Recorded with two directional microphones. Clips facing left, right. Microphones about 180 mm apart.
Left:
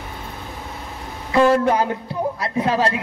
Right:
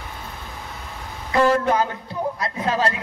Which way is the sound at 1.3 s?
30° left (ahead or behind).